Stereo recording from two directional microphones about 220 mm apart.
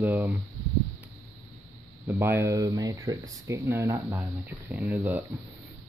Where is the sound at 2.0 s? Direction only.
10° right (ahead or behind).